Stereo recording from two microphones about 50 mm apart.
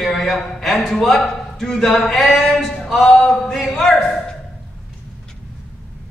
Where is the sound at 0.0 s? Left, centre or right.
Centre.